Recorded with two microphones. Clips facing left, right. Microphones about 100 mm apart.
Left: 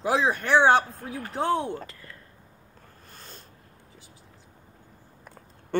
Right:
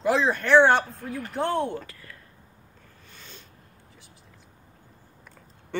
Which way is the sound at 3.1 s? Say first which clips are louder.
Left 1 dB; 45° left (ahead or behind).